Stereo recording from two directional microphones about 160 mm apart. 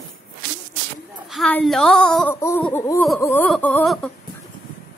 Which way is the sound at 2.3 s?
15° left (ahead or behind).